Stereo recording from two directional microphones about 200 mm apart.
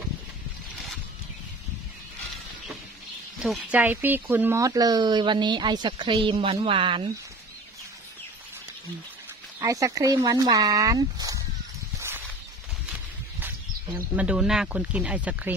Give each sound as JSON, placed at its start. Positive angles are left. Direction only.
{"t": 3.4, "sound": "speech", "side_deg": 0}
{"t": 9.6, "sound": "speech", "side_deg": -15}
{"t": 12.9, "sound": "speech", "side_deg": -10}